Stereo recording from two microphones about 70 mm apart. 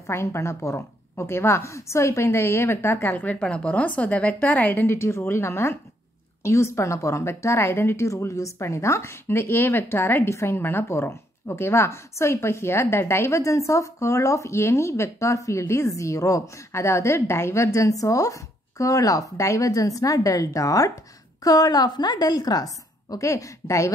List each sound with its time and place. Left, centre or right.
0.0 s a woman's voice: left
3.3 s a woman's voice: centre; by 20.9 s left
21.5 s a woman's voice: left